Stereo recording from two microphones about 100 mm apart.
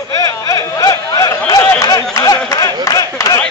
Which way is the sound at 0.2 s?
35° left (ahead or behind).